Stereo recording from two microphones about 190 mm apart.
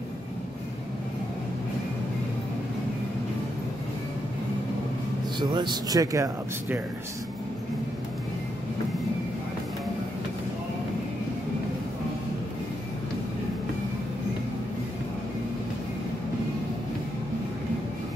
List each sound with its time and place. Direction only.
5.4 s speech: 25° right (ahead or behind)